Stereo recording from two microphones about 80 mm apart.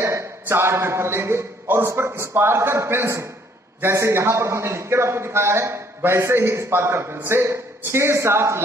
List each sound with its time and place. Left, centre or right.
0.0 s a man's voice: right